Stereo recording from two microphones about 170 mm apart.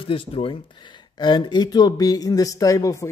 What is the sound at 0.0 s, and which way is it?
A man's voice, 30° left (ahead or behind).